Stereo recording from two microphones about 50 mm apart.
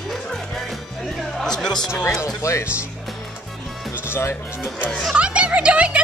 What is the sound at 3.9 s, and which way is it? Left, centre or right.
Music, left.